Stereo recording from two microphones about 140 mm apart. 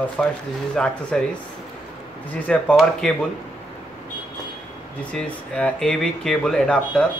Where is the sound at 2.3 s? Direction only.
10° left (ahead or behind).